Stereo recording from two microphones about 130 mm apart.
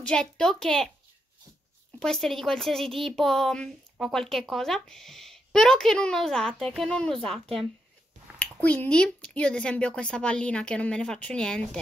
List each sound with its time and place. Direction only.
0.0 s speech: 5° left (ahead or behind)
2.0 s speech: 5° left (ahead or behind)